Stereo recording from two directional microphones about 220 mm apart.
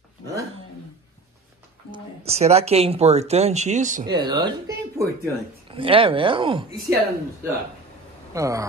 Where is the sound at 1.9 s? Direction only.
30° right (ahead or behind).